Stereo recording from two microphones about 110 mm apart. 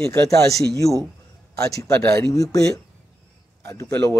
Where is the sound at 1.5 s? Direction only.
30° left (ahead or behind).